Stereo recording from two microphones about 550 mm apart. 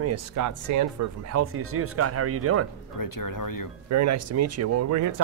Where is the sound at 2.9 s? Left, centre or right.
Left.